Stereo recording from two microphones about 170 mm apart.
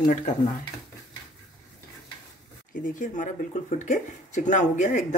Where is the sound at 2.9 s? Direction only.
50° left (ahead or behind).